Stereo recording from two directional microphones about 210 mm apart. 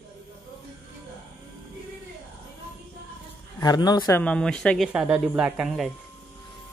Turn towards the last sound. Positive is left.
turn(degrees=-5)  # may be behind; listen again after turning